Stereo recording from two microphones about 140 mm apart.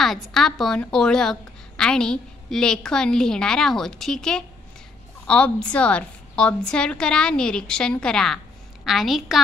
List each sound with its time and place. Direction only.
0.0 s a woman's voice: centre (ahead or behind)